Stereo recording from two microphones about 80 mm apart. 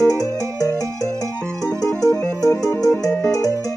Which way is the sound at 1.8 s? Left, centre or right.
Left.